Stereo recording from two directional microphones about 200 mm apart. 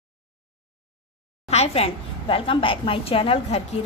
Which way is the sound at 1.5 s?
30° left (ahead or behind).